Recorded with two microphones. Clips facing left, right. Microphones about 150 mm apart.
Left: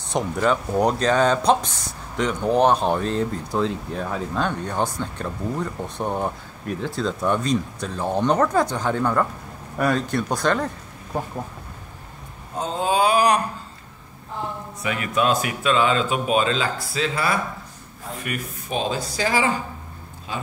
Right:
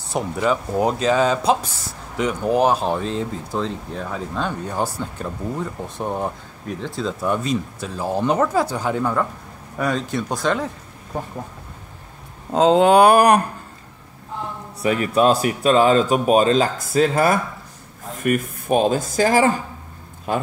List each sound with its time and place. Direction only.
0.1 s speech: 5° right (ahead or behind)
12.5 s a sound: 85° right; by 13.4 s 55° right (ahead or behind)
14.8 s a man's voice: 35° right (ahead or behind); by 20.4 s 50° right (ahead or behind)